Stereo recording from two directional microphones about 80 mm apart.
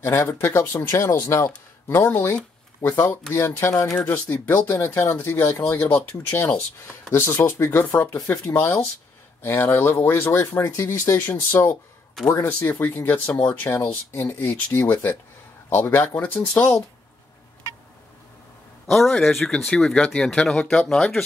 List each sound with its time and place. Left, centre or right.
0.0 s speech: left
1.9 s speech: left
3.9 s speech: left
12.7 s speech: left
13.7 s speech: left
19.0 s speech: centre